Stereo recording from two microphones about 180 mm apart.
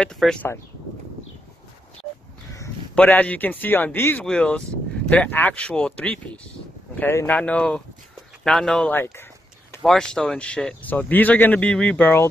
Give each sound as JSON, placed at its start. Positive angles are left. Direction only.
{"t": 0.0, "sound": "speech", "side_deg": 5}
{"t": 2.5, "sound": "a man's voice", "side_deg": 10}